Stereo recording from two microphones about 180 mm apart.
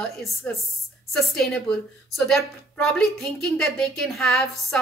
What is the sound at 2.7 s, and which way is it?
Speech, 5° left (ahead or behind).